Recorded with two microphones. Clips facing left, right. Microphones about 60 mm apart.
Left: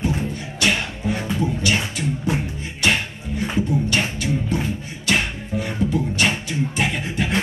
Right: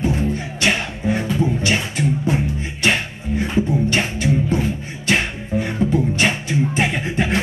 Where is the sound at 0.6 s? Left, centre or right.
Right.